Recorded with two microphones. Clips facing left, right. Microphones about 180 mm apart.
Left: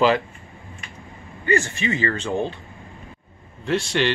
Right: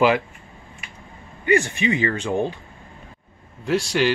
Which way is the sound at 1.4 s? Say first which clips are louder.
Right 2 dB; 15° right (ahead or behind).